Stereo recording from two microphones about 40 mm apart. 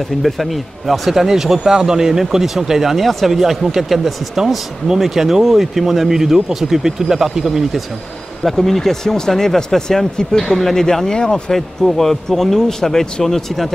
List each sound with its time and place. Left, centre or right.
0.2 s speech: centre
8.5 s speech: centre; by 11.5 s left
11.5 s speech: centre